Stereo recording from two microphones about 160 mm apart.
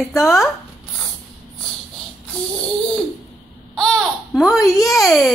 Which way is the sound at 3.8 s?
5° left (ahead or behind).